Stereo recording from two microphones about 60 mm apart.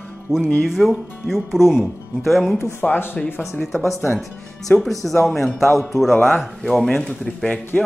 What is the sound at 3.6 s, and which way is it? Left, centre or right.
Speech, centre.